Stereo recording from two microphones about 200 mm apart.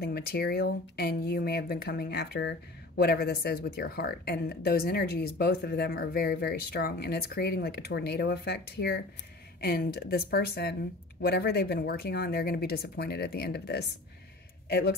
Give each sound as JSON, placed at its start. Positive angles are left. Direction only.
{"t": 0.0, "sound": "speech", "side_deg": 55}